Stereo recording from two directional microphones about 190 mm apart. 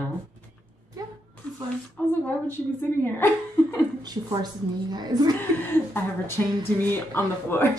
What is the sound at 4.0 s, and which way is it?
A woman's voice, 20° right (ahead or behind).